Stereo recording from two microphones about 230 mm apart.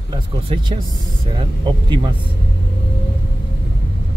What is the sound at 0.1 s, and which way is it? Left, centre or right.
Speech, centre.